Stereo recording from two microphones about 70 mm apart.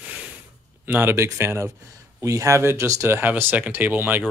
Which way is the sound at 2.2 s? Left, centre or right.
Right.